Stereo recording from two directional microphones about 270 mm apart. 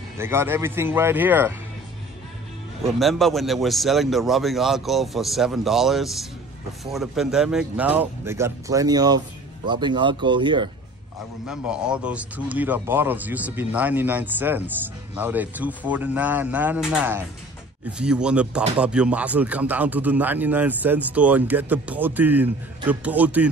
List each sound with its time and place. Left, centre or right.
0.2 s speech: centre
2.8 s speech: centre
11.4 s speech: centre